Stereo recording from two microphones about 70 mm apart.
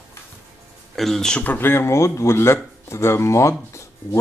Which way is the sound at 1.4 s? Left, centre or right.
Left.